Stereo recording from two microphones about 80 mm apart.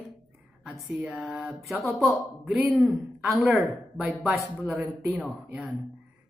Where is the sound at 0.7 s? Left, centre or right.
Centre.